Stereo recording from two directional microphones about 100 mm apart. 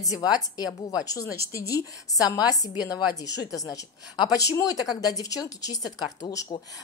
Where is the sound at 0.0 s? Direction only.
40° left (ahead or behind).